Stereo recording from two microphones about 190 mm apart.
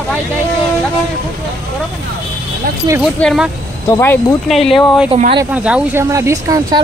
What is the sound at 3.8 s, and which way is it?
Speech, 10° left (ahead or behind).